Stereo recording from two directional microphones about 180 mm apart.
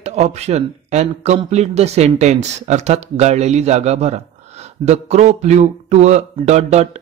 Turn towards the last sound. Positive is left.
turn(degrees=-40)  # may be behind; listen again after turning